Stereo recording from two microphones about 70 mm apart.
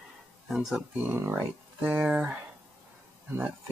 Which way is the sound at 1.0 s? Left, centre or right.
Right.